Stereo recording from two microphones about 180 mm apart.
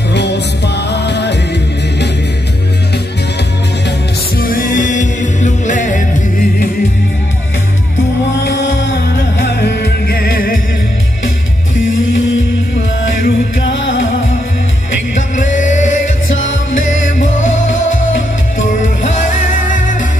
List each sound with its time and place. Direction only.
0.1 s music: 70° left (ahead or behind)
4.4 s music: 50° left (ahead or behind)
8.5 s music: 70° left (ahead or behind)
13.7 s music: 90° left
15.3 s music: 45° left (ahead or behind)